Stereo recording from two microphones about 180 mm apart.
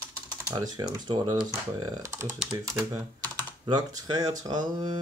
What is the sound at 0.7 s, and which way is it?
Speech, 25° right (ahead or behind).